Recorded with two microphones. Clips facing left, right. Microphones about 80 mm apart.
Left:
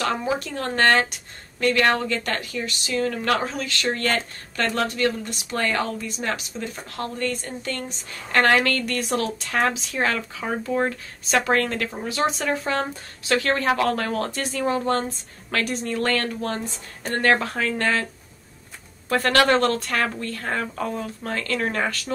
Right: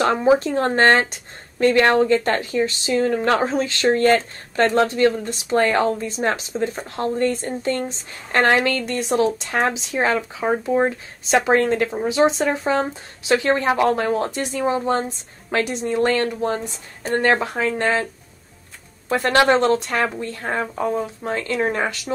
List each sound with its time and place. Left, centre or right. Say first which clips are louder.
0.0 s speech: right 8 dB; right
19.0 s speech: right 2 dB; centre